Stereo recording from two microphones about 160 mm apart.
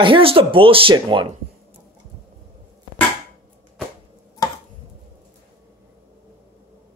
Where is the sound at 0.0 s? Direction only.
35° right (ahead or behind).